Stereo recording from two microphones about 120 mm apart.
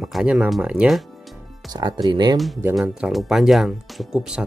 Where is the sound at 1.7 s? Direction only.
35° right (ahead or behind).